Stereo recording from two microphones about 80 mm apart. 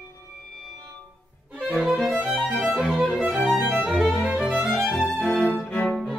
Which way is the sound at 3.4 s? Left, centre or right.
Centre.